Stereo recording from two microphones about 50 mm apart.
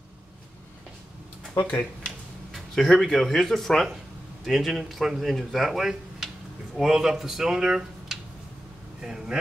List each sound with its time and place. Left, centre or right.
1.6 s speech: left
2.5 s a sound: centre
3.0 s speech: centre
4.5 s speech: centre